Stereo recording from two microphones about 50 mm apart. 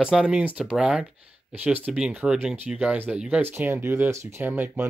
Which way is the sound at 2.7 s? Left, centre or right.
Right.